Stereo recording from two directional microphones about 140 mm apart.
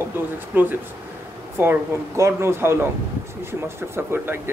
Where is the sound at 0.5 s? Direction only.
10° right (ahead or behind).